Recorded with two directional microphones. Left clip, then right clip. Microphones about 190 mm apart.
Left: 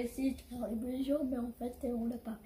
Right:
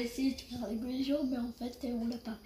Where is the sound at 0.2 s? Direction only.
5° left (ahead or behind).